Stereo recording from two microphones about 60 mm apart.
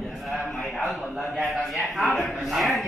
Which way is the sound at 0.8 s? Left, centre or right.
Centre.